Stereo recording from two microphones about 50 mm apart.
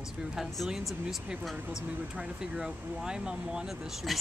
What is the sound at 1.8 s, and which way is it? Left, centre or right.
Speech, right.